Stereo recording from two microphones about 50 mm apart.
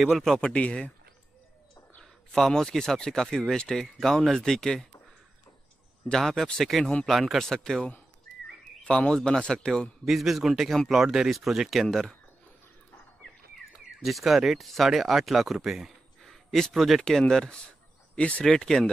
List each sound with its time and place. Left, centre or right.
0.1 s speech: centre
0.4 s speech: left
2.3 s speech: centre
6.1 s speech: centre
8.8 s speech: centre
10.0 s speech: centre
11.9 s speech: centre
14.0 s speech: centre
16.2 s a sound: centre
17.3 s speech: centre
18.1 s speech: left